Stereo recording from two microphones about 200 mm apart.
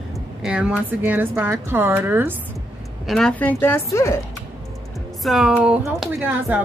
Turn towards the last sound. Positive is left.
turn(degrees=-5)  # may be behind; listen again after turning